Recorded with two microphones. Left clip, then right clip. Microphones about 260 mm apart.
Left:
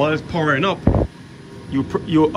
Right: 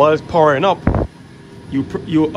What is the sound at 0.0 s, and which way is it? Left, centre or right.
Speech, centre.